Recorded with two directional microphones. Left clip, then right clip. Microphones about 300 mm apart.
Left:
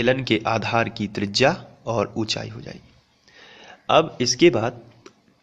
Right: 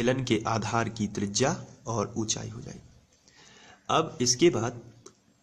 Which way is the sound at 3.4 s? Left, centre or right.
Centre.